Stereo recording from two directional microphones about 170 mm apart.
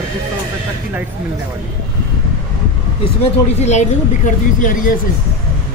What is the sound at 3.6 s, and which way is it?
Speech, 40° left (ahead or behind).